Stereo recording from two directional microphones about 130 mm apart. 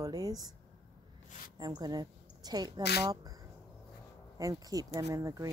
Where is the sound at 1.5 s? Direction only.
30° right (ahead or behind).